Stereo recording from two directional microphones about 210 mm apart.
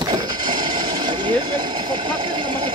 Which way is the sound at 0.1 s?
20° right (ahead or behind).